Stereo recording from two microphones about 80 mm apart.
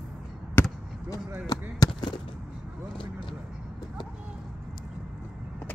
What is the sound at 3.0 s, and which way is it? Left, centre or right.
Speech, left.